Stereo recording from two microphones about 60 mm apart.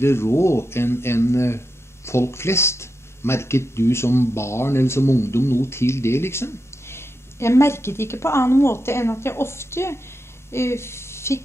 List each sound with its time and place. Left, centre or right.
0.0 s speech: left